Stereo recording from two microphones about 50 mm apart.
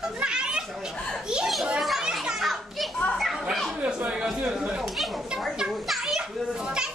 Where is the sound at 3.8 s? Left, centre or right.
Right.